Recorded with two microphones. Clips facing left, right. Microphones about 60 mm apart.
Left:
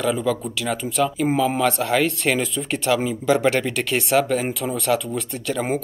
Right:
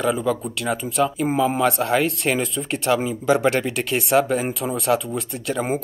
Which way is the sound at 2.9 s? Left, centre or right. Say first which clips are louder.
Even; centre.